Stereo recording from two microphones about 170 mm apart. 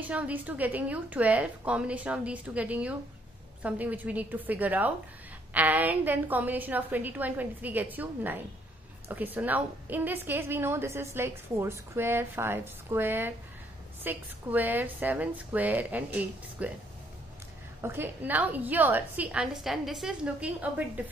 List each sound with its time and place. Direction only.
0.0 s a woman's voice: 10° right (ahead or behind)
17.8 s a woman's voice: 15° right (ahead or behind)